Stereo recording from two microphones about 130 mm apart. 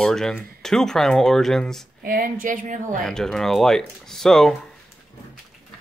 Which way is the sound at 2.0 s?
90° right.